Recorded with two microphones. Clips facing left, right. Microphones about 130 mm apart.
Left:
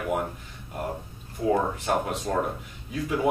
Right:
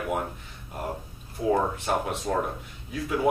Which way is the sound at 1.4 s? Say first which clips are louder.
Even; centre (ahead or behind).